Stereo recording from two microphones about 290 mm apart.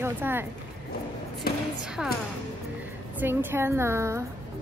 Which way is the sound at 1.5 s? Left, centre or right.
Left.